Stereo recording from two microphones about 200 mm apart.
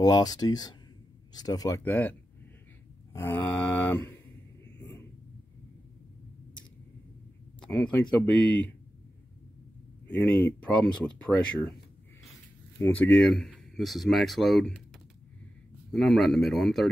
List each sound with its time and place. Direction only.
0.0 s speech: 20° left (ahead or behind)
3.1 s mantra: 10° left (ahead or behind)
7.6 s speech: 5° left (ahead or behind)
10.8 s speech: 5° left (ahead or behind)
12.7 s speech: 10° left (ahead or behind)
15.9 s speech: centre (ahead or behind)